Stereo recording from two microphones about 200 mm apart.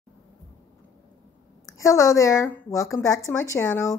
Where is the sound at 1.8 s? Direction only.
15° left (ahead or behind).